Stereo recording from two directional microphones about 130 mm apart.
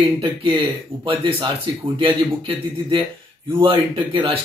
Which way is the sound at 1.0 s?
40° right (ahead or behind).